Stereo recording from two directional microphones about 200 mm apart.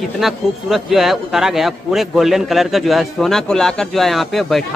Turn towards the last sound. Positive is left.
turn(degrees=0)  # may be behind; listen again after turning